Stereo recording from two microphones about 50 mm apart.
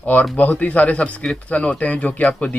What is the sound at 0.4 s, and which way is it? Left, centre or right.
Speech, left.